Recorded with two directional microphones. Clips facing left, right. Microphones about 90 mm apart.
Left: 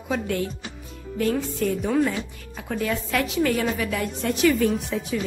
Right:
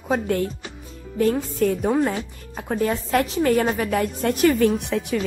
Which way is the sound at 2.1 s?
40° right (ahead or behind).